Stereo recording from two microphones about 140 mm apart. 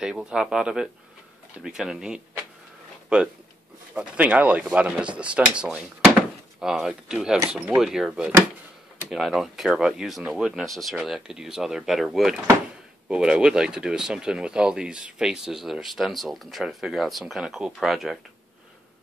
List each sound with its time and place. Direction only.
0.0 s speech: 5° right (ahead or behind)
3.9 s speech: 10° right (ahead or behind)